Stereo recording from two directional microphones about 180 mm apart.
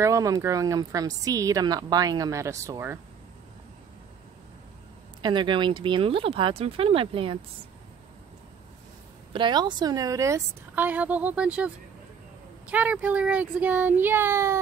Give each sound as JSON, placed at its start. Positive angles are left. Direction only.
{"t": 0.0, "sound": "speech", "side_deg": -20}
{"t": 5.2, "sound": "speech", "side_deg": -25}
{"t": 9.3, "sound": "a woman's voice", "side_deg": -25}